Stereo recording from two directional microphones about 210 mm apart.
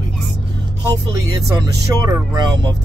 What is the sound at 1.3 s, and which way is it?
Speech, 20° right (ahead or behind).